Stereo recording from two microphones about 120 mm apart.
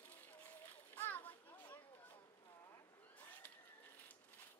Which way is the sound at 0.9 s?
15° left (ahead or behind).